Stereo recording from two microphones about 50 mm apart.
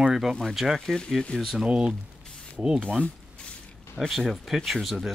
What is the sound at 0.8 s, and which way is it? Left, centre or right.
Speech, centre.